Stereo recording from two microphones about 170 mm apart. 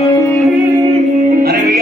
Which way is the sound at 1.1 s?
55° right (ahead or behind).